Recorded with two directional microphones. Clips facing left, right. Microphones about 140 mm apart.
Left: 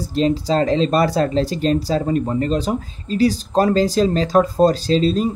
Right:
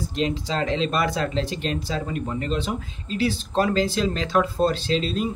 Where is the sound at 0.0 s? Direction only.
35° left (ahead or behind).